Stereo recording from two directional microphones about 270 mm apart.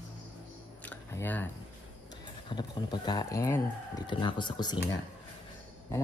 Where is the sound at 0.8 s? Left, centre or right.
Centre.